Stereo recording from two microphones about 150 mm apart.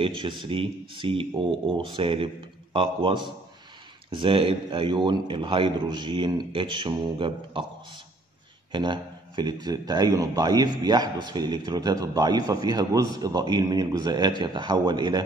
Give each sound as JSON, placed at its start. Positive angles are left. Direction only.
{"t": 0.0, "sound": "a man's voice", "side_deg": -35}
{"t": 8.7, "sound": "a man's voice", "side_deg": -30}